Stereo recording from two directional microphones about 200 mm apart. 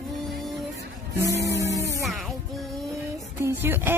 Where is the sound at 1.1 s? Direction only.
15° right (ahead or behind).